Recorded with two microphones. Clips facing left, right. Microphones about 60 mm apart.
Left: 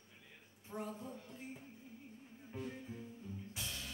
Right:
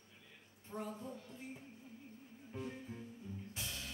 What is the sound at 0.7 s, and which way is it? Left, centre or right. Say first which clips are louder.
Speech: even; centre.